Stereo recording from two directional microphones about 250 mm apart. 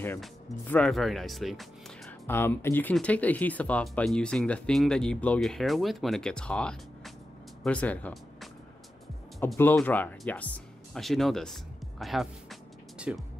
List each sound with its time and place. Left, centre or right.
0.0 s speech: centre